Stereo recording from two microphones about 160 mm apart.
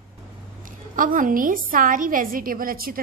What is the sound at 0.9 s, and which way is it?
A woman's voice, 60° right (ahead or behind).